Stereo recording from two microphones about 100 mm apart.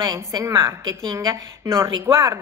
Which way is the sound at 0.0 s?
35° right (ahead or behind).